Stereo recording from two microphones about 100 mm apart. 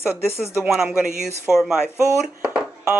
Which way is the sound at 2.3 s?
10° right (ahead or behind).